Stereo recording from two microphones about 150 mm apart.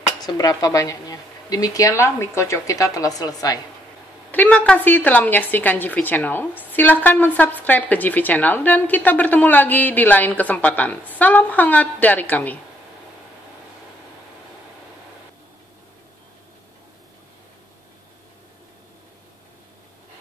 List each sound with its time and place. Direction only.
0.2 s speech: 25° left (ahead or behind)
4.3 s a woman's voice: 10° left (ahead or behind)